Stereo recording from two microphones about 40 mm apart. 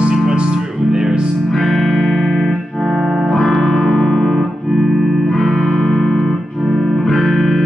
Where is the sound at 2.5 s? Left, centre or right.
Centre.